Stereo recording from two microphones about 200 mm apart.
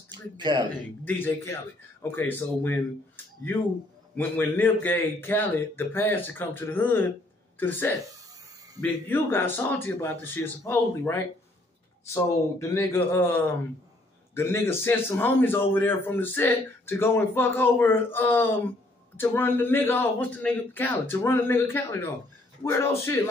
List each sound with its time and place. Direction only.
0.1 s speech: 20° right (ahead or behind)
1.0 s a man's voice: 10° left (ahead or behind)
4.2 s a man's voice: 10° left (ahead or behind)